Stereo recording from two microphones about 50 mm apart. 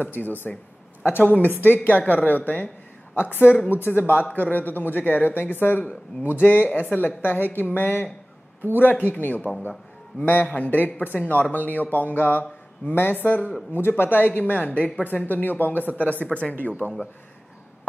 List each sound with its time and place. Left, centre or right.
0.0 s speech: left
3.2 s speech: left